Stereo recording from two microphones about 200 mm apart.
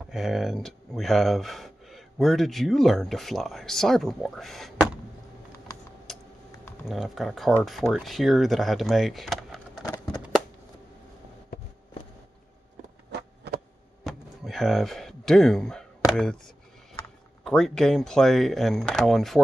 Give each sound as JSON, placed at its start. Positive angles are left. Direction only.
{"t": 0.1, "sound": "speech", "side_deg": 0}
{"t": 6.1, "sound": "typing", "side_deg": 0}
{"t": 6.9, "sound": "speech", "side_deg": 0}
{"t": 13.1, "sound": "a sound", "side_deg": -55}
{"t": 14.0, "sound": "a sound", "side_deg": 0}
{"t": 16.1, "sound": "speech", "side_deg": 5}
{"t": 17.5, "sound": "speech", "side_deg": 0}